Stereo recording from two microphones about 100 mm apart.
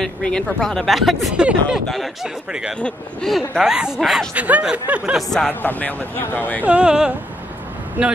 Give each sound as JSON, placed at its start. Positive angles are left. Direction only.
{"t": 0.0, "sound": "speech", "side_deg": 5}
{"t": 2.8, "sound": "speech", "side_deg": 5}
{"t": 4.3, "sound": "speech", "side_deg": -15}
{"t": 5.1, "sound": "speech", "side_deg": 5}
{"t": 5.5, "sound": "speech", "side_deg": 20}
{"t": 6.6, "sound": "speech", "side_deg": -10}